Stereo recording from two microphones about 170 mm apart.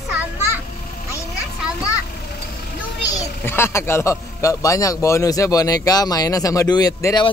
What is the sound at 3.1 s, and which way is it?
Speech, 15° left (ahead or behind).